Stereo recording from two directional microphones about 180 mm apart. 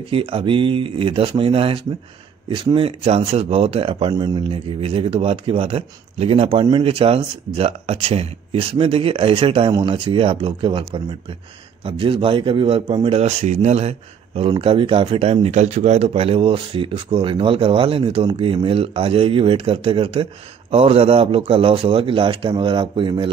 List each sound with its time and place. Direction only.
0.1 s speech: 30° right (ahead or behind)